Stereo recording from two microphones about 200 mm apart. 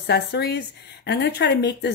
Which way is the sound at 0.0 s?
50° left (ahead or behind).